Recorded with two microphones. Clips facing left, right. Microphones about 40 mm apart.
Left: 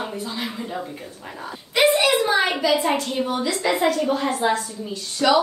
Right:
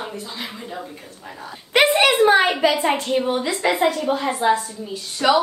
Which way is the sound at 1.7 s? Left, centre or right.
Right.